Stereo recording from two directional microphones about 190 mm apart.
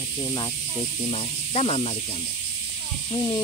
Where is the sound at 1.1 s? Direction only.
30° left (ahead or behind).